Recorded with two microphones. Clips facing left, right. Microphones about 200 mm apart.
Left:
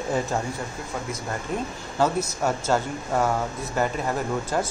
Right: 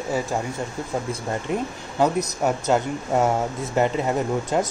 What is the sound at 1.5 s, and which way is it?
Speech, 10° right (ahead or behind).